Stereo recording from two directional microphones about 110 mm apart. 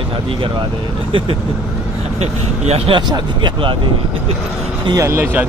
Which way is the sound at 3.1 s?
45° right (ahead or behind).